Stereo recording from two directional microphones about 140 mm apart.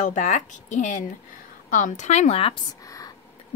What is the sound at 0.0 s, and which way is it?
Speech, 60° left (ahead or behind).